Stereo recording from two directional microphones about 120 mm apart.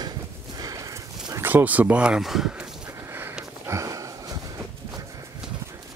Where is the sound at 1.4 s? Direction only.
15° right (ahead or behind).